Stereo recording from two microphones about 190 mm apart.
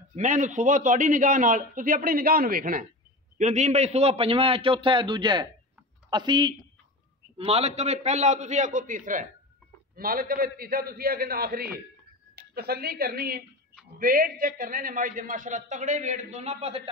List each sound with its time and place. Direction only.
0.1 s a man's voice: 40° right (ahead or behind)